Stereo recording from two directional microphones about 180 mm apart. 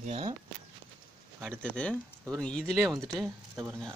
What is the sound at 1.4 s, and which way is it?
Speech, 5° left (ahead or behind).